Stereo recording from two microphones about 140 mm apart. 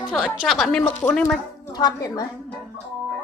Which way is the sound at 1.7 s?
30° left (ahead or behind).